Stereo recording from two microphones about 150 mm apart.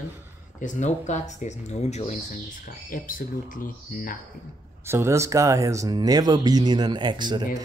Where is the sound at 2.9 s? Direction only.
65° left (ahead or behind).